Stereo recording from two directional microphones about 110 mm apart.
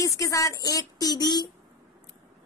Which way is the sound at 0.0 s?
30° left (ahead or behind).